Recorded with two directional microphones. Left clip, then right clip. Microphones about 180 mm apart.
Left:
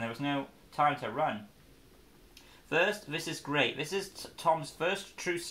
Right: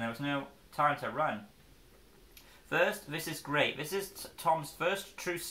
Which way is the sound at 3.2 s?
15° left (ahead or behind).